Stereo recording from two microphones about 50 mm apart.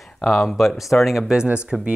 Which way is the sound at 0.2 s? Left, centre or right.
Centre.